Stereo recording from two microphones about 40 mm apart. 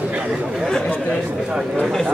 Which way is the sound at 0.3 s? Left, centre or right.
Centre.